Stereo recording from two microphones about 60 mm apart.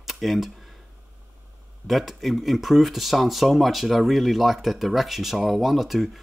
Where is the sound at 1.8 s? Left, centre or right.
Centre.